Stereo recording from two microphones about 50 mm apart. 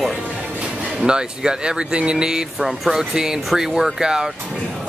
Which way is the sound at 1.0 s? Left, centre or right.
Centre.